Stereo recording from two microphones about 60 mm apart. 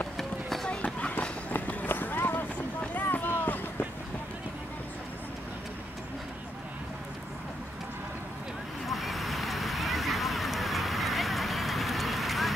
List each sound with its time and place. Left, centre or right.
0.2 s run: centre
0.7 s run: left
2.8 s a sound: left
8.8 s vehicle: centre